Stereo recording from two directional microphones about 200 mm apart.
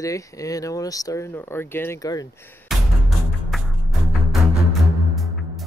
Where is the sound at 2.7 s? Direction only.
Centre (ahead or behind).